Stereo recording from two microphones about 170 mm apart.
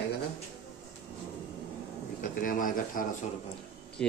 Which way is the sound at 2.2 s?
55° left (ahead or behind).